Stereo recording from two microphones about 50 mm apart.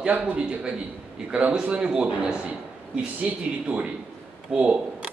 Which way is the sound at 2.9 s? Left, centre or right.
Right.